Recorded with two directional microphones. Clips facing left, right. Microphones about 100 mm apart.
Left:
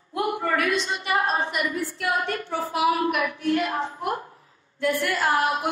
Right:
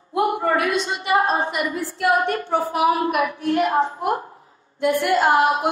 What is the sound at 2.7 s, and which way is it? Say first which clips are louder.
A woman's voice: right 1 dB; 35° right (ahead or behind).